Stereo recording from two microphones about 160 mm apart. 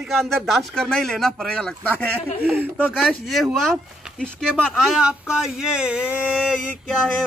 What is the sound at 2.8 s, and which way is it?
Speech, centre (ahead or behind).